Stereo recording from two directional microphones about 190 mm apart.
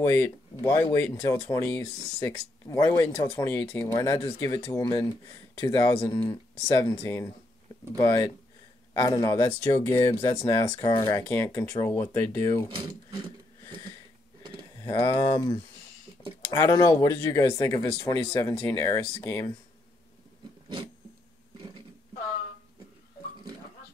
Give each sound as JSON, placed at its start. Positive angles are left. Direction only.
{"t": 0.0, "sound": "speech", "side_deg": 15}
{"t": 3.1, "sound": "speech", "side_deg": 30}
{"t": 3.3, "sound": "speech", "side_deg": 10}
{"t": 14.8, "sound": "speech", "side_deg": 20}
{"t": 20.6, "sound": "a sound", "side_deg": -25}